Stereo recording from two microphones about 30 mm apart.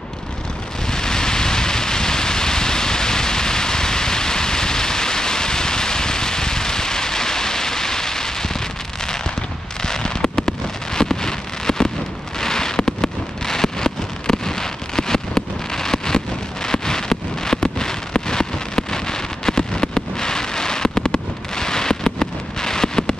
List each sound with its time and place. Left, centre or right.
0.8 s a sound: left
9.8 s fireworks: left
16.6 s rain: left